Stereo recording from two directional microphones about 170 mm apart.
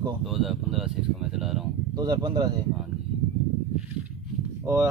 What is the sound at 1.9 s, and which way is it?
Speech, 25° right (ahead or behind).